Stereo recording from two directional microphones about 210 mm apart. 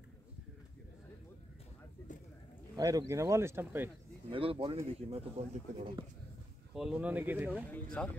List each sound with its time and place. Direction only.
2.7 s speech: 20° right (ahead or behind)
4.3 s speech: 25° right (ahead or behind)
6.7 s speech: 5° right (ahead or behind)
7.7 s speech: 5° left (ahead or behind)